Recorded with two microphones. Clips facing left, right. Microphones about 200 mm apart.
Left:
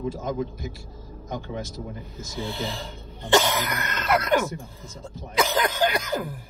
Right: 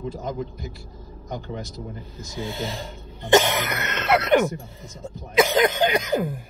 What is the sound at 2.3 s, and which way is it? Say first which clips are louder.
Speech: right 1 dB; 15° right (ahead or behind).